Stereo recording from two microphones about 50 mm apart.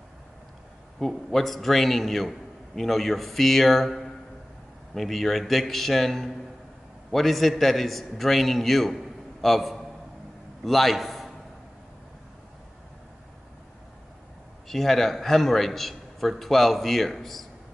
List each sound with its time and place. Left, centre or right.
0.9 s a man's voice: centre
14.7 s a man's voice: centre